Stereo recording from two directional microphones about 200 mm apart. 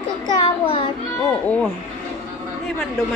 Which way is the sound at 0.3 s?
25° left (ahead or behind).